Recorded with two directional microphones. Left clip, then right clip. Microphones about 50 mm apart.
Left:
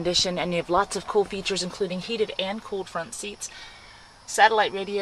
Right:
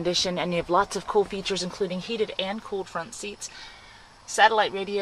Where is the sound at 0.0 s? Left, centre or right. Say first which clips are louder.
Left 1 dB; centre.